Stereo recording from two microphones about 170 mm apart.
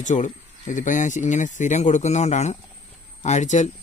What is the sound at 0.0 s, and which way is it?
Speech, 45° left (ahead or behind).